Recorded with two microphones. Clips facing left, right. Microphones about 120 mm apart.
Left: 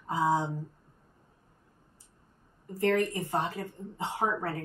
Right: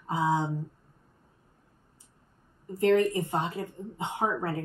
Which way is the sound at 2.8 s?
20° right (ahead or behind).